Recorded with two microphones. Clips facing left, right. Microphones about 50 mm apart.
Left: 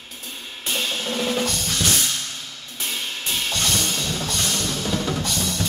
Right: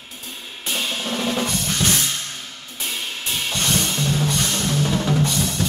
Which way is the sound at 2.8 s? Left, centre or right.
Centre.